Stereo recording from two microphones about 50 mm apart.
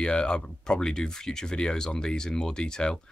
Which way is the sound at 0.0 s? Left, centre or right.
Centre.